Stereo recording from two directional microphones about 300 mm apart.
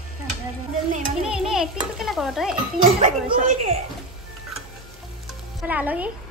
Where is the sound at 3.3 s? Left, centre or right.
Right.